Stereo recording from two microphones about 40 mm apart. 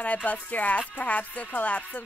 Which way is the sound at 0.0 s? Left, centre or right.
Left.